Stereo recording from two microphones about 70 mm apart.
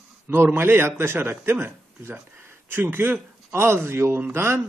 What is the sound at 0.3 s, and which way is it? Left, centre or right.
A man's voice, right.